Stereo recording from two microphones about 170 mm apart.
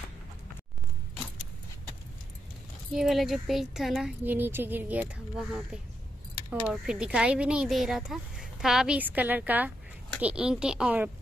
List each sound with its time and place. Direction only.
2.9 s speech: centre (ahead or behind)